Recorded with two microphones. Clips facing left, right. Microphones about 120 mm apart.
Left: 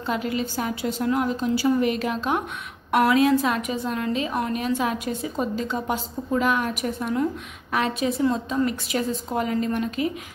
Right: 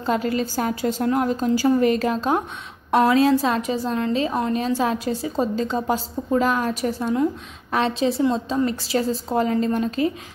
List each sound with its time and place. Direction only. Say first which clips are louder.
0.0 s a woman's voice: right 4 dB; 40° right (ahead or behind)